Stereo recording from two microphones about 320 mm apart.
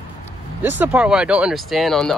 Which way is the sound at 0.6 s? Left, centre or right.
Centre.